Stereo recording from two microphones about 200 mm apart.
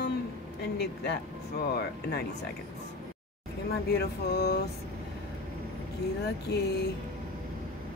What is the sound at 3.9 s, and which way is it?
Speech, 55° left (ahead or behind).